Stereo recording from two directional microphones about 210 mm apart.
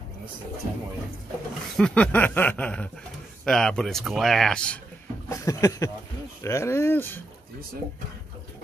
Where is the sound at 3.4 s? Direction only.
Centre (ahead or behind).